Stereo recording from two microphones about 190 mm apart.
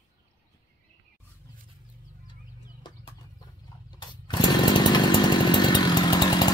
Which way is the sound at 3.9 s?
20° left (ahead or behind).